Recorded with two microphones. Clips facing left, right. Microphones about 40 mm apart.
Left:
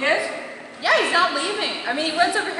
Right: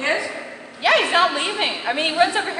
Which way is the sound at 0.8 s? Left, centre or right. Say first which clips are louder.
Right 1 dB; right.